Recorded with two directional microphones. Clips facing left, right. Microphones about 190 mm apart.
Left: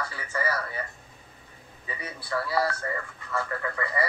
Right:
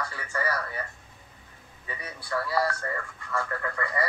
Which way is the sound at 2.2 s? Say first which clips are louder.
Even; 5° left (ahead or behind).